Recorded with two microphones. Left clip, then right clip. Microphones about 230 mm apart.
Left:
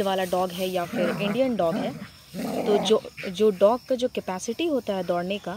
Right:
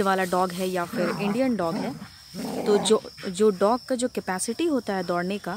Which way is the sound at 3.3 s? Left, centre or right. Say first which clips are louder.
Left 1 dB; right.